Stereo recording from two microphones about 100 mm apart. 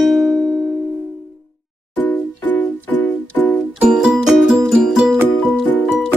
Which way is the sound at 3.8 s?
5° right (ahead or behind).